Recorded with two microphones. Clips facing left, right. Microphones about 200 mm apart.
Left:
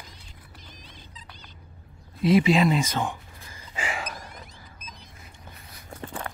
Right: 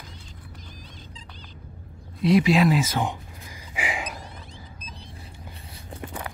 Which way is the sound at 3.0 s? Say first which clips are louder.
Right 2 dB; 15° right (ahead or behind).